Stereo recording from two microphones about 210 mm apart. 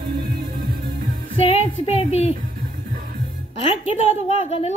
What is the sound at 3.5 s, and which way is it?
A woman's voice, 30° left (ahead or behind).